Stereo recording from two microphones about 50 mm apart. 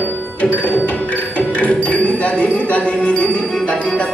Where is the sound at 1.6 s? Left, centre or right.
Left.